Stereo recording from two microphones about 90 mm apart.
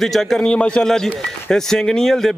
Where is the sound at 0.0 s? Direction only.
5° left (ahead or behind).